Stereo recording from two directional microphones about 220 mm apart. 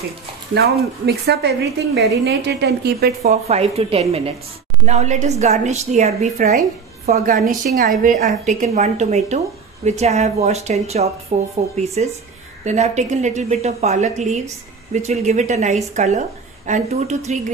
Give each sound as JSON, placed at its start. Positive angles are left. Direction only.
{"t": 0.6, "sound": "a woman's voice", "side_deg": -45}
{"t": 3.4, "sound": "a woman's voice", "side_deg": -30}